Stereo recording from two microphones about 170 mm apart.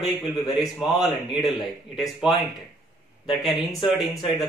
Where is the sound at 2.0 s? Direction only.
Centre (ahead or behind).